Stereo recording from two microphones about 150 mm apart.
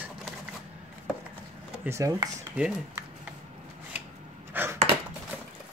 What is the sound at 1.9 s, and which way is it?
Speech, 20° right (ahead or behind).